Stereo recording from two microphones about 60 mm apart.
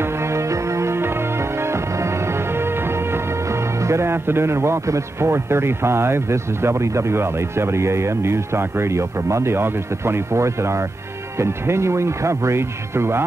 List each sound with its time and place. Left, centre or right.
0.0 s music: right
11.3 s speech: right